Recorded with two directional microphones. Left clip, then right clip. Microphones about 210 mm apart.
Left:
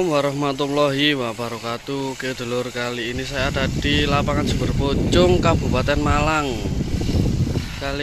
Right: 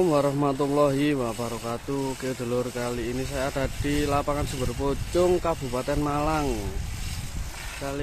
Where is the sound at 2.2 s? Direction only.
5° left (ahead or behind).